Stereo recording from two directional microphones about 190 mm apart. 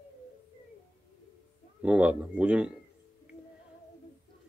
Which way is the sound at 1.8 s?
5° right (ahead or behind).